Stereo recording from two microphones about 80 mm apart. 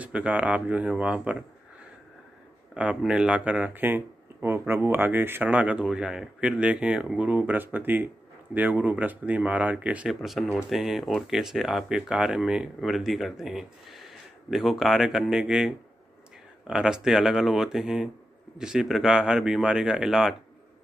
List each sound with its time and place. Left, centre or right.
0.0 s speech: centre
2.7 s speech: centre
5.5 s speech: centre
10.0 s speech: centre